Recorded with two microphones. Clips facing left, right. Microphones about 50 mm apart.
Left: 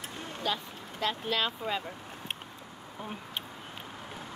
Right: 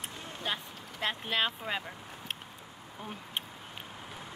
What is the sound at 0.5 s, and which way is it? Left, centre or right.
Speech, right.